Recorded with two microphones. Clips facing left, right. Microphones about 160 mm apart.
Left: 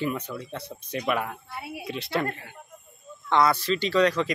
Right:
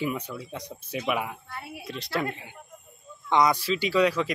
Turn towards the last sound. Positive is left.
turn(degrees=-5)  # may be behind; listen again after turning